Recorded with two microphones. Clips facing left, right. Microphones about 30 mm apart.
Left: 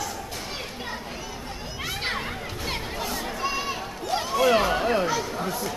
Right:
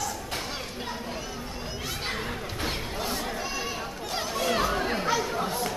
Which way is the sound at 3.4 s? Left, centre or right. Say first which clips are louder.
Left 4 dB; left.